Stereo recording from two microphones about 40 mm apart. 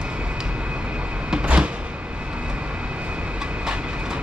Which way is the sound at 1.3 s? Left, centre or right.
Right.